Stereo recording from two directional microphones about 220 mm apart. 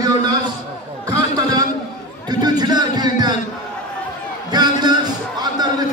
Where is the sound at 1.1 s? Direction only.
15° right (ahead or behind).